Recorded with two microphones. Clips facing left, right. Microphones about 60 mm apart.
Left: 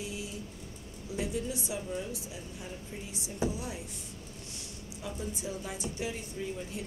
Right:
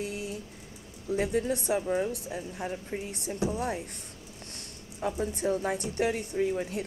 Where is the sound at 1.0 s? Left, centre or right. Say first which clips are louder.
Right 7 dB; right.